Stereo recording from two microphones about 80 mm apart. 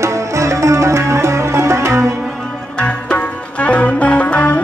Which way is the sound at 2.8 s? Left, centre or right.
Centre.